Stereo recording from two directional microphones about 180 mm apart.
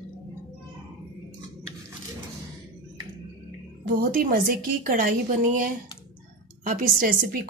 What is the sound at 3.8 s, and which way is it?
A woman's voice, 55° right (ahead or behind).